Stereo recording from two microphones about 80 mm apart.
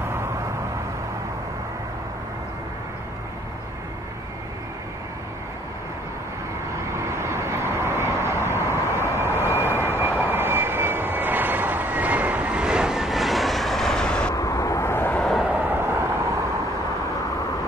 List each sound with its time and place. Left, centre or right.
7.0 s vehicle: right; by 14.3 s centre
14.3 s vehicle: left
15.4 s vehicle: right